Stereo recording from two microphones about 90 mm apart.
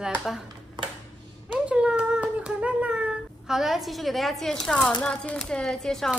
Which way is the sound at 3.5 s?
5° right (ahead or behind).